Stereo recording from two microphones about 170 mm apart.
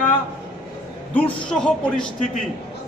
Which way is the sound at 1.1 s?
5° left (ahead or behind).